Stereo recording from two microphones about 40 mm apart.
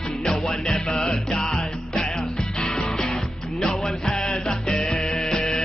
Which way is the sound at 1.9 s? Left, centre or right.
Centre.